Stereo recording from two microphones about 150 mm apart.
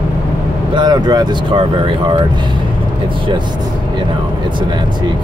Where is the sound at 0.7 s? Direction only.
30° right (ahead or behind).